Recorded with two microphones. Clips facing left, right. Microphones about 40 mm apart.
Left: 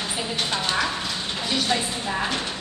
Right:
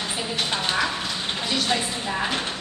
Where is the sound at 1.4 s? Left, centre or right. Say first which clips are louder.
Left 1 dB; centre.